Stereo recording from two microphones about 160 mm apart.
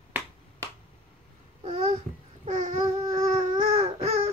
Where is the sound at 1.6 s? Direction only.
40° right (ahead or behind).